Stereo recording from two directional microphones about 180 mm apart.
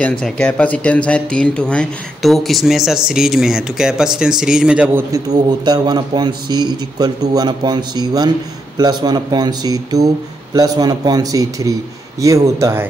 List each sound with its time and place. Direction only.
0.0 s speech: 5° left (ahead or behind)
5.1 s a man's voice: 20° right (ahead or behind)